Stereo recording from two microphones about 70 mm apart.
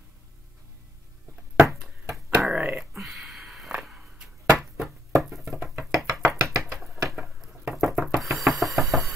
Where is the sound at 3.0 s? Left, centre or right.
Centre.